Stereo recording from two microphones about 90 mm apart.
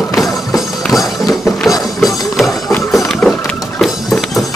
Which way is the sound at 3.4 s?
5° left (ahead or behind).